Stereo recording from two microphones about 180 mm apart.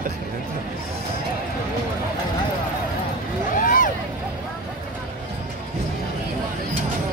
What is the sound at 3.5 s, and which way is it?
Vehicle, 45° left (ahead or behind).